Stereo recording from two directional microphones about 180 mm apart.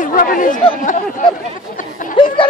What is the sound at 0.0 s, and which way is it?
Chatter, 50° left (ahead or behind).